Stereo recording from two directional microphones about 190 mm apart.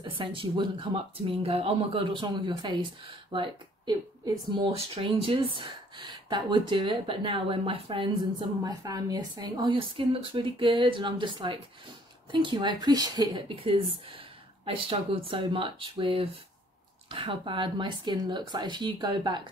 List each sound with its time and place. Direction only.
0.0 s speech: 25° right (ahead or behind)
3.3 s a sound: 25° right (ahead or behind)
4.7 s speech: 30° right (ahead or behind)